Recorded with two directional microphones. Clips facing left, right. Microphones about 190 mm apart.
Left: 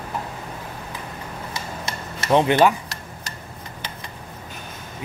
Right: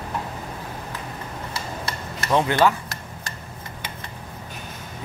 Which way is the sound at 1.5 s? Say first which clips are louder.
Even; 20° left (ahead or behind).